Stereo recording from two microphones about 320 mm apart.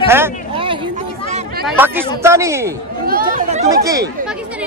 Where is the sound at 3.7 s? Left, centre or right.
Centre.